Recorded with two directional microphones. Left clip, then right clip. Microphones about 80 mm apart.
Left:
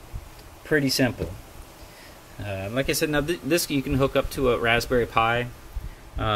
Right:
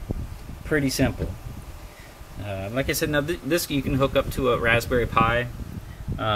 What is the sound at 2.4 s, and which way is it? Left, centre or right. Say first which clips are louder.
Speech: even; centre.